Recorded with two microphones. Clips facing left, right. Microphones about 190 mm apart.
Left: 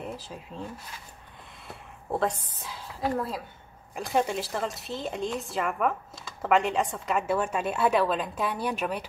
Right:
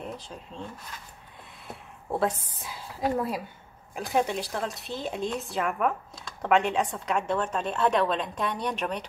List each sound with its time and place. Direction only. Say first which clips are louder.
0.0 s speech: left 1 dB; 5° left (ahead or behind)
1.7 s a woman's voice: even; centre (ahead or behind)
3.9 s a woman's voice: even; centre (ahead or behind)